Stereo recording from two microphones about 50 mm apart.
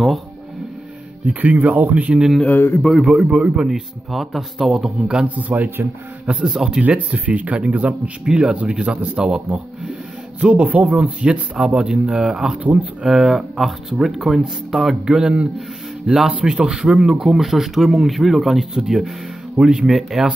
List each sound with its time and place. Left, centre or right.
1.2 s speech: right
2.5 s speech: left
2.8 s speech: centre
3.3 s speech: right
4.1 s speech: centre
5.0 s speech: centre
5.3 s speech: right
6.2 s speech: centre
6.8 s speech: right
8.3 s speech: centre; by 11.2 s right
11.2 s speech: centre
13.0 s speech: centre
15.0 s speech: centre